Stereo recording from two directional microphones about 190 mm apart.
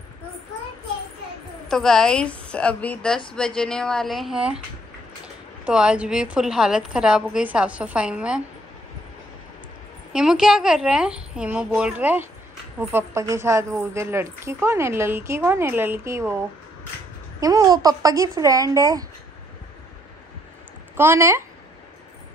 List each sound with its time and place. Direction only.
1.7 s speech: centre (ahead or behind)
10.1 s a woman's voice: 5° right (ahead or behind)
17.4 s speech: 20° right (ahead or behind)
20.9 s a woman's voice: 10° right (ahead or behind)